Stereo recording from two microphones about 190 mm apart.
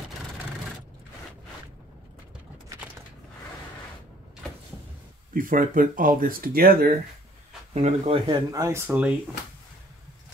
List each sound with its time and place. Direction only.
4.4 s cupboard open or close: 5° left (ahead or behind)
5.3 s speech: 45° right (ahead or behind)
7.7 s speech: 35° right (ahead or behind)
8.5 s speech: 15° right (ahead or behind)